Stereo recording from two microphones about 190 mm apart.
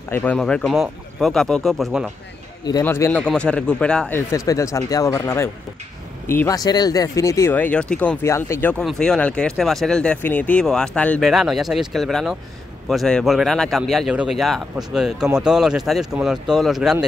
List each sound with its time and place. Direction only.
0.1 s speech: 10° left (ahead or behind)
2.8 s speech: 10° left (ahead or behind)
4.3 s speech: 15° left (ahead or behind); by 17.0 s centre (ahead or behind)